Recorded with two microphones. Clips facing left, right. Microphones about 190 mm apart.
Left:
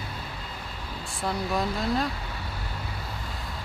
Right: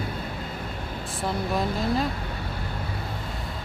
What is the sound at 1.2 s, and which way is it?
Speech, centre (ahead or behind).